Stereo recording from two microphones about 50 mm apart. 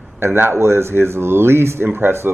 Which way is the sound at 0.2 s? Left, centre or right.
Right.